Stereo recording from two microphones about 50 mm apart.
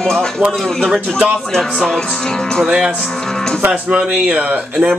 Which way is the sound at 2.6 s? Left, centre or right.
Centre.